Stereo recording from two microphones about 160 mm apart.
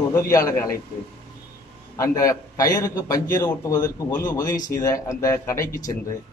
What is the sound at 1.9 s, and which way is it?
A man's voice, 20° left (ahead or behind).